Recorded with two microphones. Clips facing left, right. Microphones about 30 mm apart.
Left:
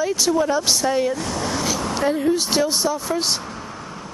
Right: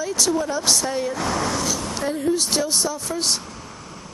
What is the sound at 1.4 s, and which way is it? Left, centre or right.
Speech, centre.